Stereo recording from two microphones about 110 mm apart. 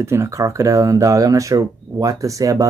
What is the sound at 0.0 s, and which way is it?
Speech, 25° right (ahead or behind).